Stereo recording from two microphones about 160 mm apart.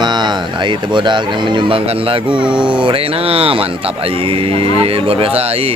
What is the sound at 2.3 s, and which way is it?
Speech, 5° right (ahead or behind).